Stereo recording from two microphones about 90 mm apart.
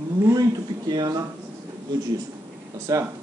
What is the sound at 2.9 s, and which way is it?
Speech, 40° right (ahead or behind).